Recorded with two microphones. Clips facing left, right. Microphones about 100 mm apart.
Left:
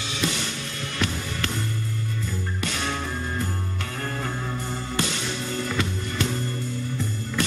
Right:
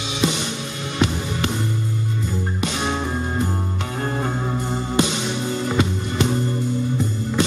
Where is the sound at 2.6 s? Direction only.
20° right (ahead or behind).